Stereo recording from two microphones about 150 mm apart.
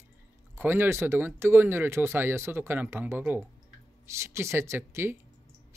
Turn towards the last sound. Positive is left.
turn(degrees=-15)  # may be behind; listen again after turning